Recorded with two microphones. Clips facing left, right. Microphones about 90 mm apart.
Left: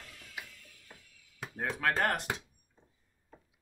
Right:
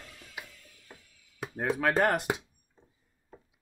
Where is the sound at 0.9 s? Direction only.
25° right (ahead or behind).